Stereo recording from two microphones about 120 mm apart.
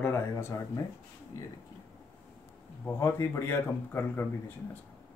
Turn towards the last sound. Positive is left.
turn(degrees=20)  # may be behind; listen again after turning